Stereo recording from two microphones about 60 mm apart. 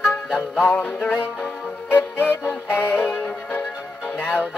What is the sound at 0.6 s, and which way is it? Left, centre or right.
Music, left.